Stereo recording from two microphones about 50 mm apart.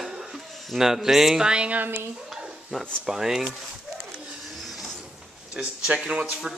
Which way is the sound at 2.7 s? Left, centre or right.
Centre.